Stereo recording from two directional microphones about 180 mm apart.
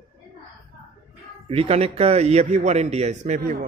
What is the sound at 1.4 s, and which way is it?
A man's voice, 35° right (ahead or behind).